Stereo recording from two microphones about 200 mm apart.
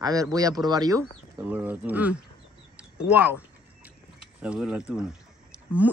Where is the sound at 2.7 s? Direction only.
5° right (ahead or behind).